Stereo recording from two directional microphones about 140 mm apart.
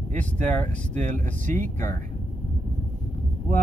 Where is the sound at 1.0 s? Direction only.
60° right (ahead or behind).